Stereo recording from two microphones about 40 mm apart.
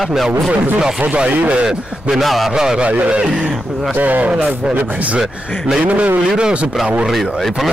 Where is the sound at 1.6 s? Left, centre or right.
Centre.